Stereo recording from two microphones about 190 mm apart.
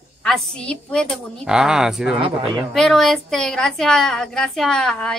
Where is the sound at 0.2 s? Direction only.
5° left (ahead or behind).